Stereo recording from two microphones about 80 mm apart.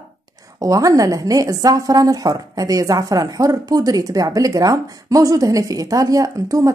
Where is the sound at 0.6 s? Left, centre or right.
Right.